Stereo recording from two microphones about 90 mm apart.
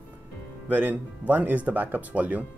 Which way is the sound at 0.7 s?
15° right (ahead or behind).